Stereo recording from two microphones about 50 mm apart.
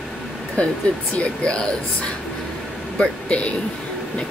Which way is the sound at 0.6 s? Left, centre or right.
Left.